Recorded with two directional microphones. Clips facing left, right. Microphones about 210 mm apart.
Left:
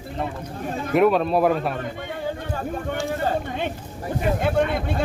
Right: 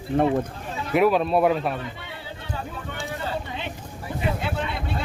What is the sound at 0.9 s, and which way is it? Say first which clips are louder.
Speech: left 1 dB; centre (ahead or behind).